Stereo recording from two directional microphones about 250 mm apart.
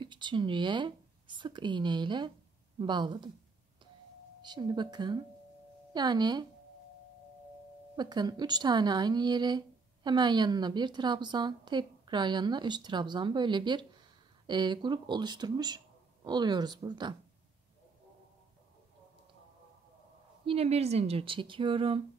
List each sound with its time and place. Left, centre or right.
0.0 s a woman's voice: centre
4.4 s a woman's voice: centre
7.9 s a woman's voice: centre
20.4 s speech: right